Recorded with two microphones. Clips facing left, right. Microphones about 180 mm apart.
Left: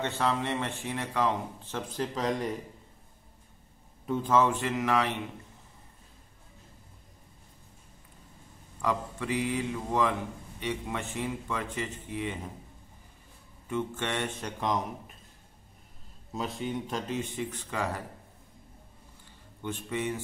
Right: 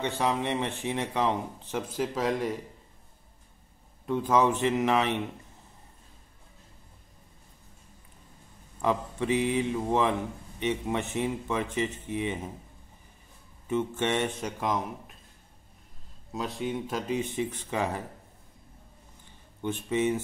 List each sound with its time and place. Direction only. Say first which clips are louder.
0.0 s speech: right 1 dB; 15° right (ahead or behind)
1.8 s speech: right 3 dB; 5° right (ahead or behind)
4.0 s a sound: right 2 dB; centre (ahead or behind)
4.3 s speech: right 2 dB; 20° right (ahead or behind)
8.8 s speech: right 4 dB; 20° right (ahead or behind)
13.7 s speech: right 4 dB; 20° right (ahead or behind)
14.6 s speech: even; centre (ahead or behind)
16.3 s speech: right 2 dB; centre (ahead or behind)
17.1 s speech: right 4 dB; 15° right (ahead or behind)
19.6 s speech: right 6 dB; 20° right (ahead or behind)